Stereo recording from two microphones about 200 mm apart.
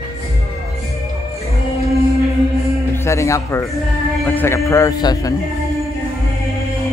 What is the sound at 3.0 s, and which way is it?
A man's voice, 15° left (ahead or behind).